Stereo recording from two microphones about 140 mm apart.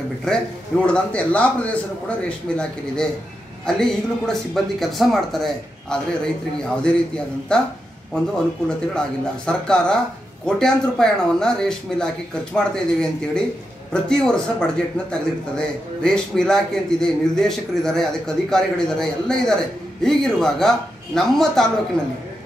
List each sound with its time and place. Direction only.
0.3 s a man's voice: 5° left (ahead or behind)
9.5 s a man's voice: 5° left (ahead or behind)